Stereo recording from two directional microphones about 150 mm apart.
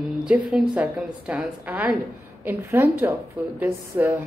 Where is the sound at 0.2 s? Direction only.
5° right (ahead or behind).